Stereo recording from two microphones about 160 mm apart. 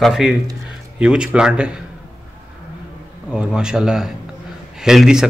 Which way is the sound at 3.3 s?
5° right (ahead or behind).